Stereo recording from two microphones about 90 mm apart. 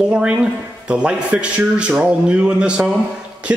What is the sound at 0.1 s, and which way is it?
Speech, 10° right (ahead or behind).